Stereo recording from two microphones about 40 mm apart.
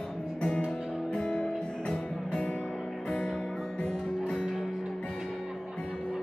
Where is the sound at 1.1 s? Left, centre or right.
Left.